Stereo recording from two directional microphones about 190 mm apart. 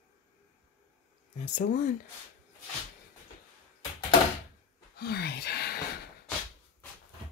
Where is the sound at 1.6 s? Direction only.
40° left (ahead or behind).